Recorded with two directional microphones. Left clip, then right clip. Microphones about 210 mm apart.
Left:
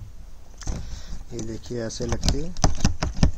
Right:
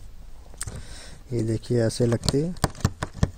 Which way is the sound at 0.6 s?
45° right (ahead or behind).